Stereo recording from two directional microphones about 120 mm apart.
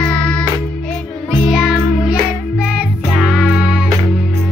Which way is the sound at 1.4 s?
5° right (ahead or behind).